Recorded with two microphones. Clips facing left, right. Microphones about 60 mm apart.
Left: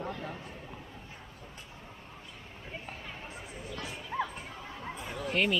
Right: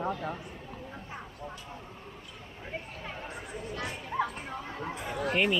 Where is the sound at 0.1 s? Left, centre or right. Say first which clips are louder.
Right 5 dB; centre.